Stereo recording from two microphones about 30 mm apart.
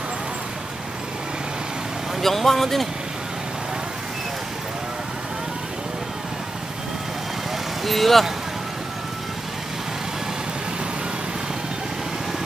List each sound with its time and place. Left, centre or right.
2.2 s speech: centre
7.8 s speech: centre